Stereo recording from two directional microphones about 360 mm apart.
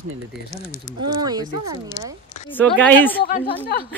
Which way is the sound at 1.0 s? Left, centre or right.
Centre.